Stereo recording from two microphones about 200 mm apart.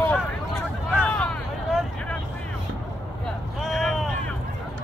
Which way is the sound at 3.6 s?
Centre (ahead or behind).